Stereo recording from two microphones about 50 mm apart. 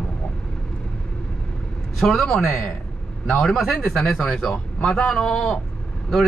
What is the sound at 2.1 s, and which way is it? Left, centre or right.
Speech, centre.